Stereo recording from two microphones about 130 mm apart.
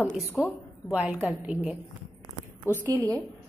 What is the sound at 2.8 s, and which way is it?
Speech, 25° right (ahead or behind).